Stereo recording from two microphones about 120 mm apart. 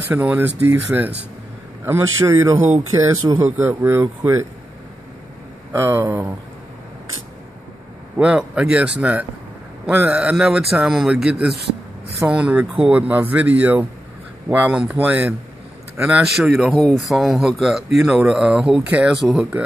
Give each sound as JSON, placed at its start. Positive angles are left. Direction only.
{"t": 0.1, "sound": "speech", "side_deg": -15}
{"t": 5.7, "sound": "speech", "side_deg": -20}
{"t": 8.2, "sound": "speech", "side_deg": -10}